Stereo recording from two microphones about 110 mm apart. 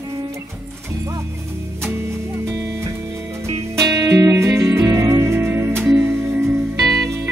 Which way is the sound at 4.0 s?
30° right (ahead or behind).